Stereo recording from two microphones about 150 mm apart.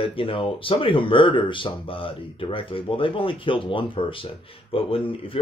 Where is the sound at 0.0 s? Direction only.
35° left (ahead or behind).